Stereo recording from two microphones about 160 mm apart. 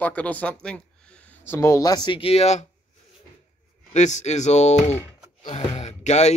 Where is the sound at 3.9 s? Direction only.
45° left (ahead or behind).